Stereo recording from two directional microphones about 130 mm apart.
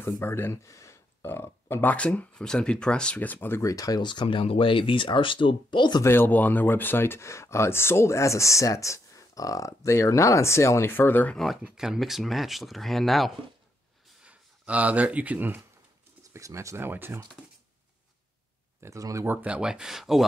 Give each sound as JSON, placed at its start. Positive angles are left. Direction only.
{"t": 0.0, "sound": "speech", "side_deg": 20}
{"t": 6.0, "sound": "speech", "side_deg": 15}
{"t": 11.3, "sound": "speech", "side_deg": 0}
{"t": 14.2, "sound": "speech", "side_deg": -10}
{"t": 16.3, "sound": "speech", "side_deg": -25}
{"t": 18.8, "sound": "speech", "side_deg": -25}
{"t": 19.2, "sound": "speech", "side_deg": -10}